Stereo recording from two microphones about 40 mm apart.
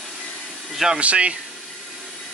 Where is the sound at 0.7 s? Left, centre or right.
Centre.